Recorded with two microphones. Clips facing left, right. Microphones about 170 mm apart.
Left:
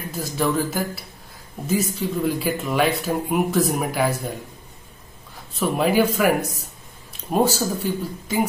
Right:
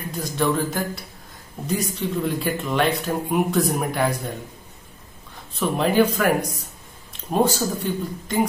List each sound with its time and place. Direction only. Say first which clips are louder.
0.1 s speech: even; 5° left (ahead or behind)
5.6 s a man's voice: even; 5° left (ahead or behind)